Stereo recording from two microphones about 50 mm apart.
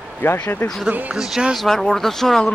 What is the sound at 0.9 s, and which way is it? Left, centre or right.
Speech, right.